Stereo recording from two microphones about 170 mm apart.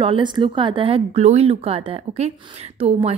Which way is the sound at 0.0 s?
30° right (ahead or behind).